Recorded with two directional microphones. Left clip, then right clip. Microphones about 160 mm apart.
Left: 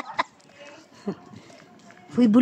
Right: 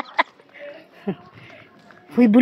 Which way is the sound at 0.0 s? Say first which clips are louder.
Right 6 dB; 5° right (ahead or behind).